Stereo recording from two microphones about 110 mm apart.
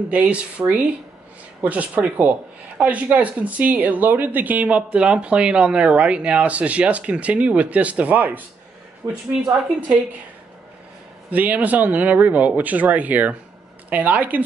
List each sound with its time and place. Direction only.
0.1 s speech: 10° right (ahead or behind)
11.2 s speech: 15° right (ahead or behind)